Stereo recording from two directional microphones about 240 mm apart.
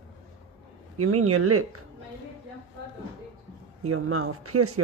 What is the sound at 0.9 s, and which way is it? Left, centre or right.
Speech, right.